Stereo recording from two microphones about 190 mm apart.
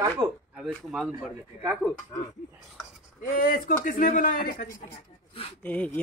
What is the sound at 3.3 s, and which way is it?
Speech, 45° left (ahead or behind).